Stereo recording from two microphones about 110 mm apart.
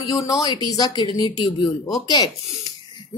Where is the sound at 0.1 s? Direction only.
30° left (ahead or behind).